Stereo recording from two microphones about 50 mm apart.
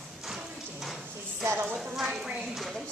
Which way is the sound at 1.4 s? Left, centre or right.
Right.